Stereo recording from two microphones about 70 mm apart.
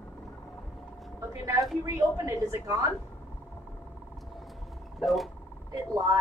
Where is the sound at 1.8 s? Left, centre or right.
Right.